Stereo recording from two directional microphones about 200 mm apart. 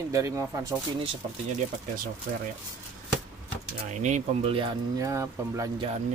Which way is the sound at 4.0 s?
35° right (ahead or behind).